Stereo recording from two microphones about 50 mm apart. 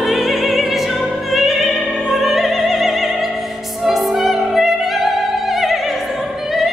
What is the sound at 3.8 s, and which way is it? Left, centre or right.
Opera, centre.